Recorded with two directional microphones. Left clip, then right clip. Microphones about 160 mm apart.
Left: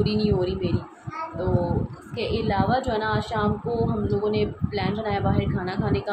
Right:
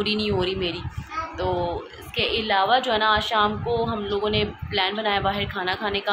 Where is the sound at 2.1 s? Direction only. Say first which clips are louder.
Right 4 dB; 5° left (ahead or behind).